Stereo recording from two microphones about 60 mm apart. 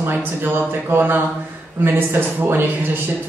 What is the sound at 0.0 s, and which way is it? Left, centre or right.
Speech, right.